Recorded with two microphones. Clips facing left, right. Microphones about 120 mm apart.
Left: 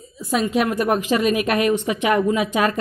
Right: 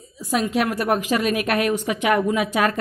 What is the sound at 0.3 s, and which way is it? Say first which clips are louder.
A woman's voice: left 2 dB; 5° right (ahead or behind).